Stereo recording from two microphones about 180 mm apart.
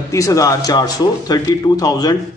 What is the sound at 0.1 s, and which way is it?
A man's voice, 20° left (ahead or behind).